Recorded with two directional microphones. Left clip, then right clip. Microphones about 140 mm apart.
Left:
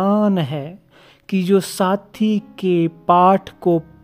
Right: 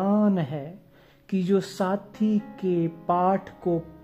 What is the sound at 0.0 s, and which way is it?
Speech, 35° left (ahead or behind).